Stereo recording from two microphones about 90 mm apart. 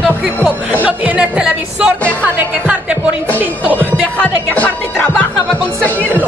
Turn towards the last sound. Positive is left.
turn(degrees=20)  # may be behind; listen again after turning